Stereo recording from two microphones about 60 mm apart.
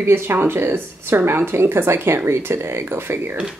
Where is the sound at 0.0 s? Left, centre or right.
Right.